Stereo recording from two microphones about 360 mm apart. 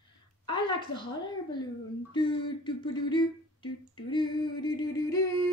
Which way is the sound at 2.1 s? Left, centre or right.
Centre.